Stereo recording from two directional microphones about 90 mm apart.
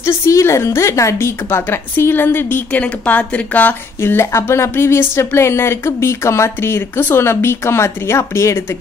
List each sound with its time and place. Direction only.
0.0 s speech: 35° left (ahead or behind); by 3.7 s 15° left (ahead or behind)
4.0 s speech: 30° left (ahead or behind)